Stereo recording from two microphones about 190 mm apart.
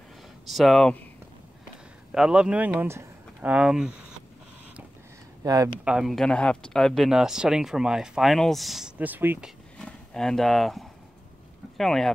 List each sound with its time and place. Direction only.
0.5 s speech: centre (ahead or behind)
2.1 s speech: 5° right (ahead or behind)
5.4 s speech: 20° right (ahead or behind)
5.9 s speech: centre (ahead or behind)
9.8 s speech: 5° left (ahead or behind)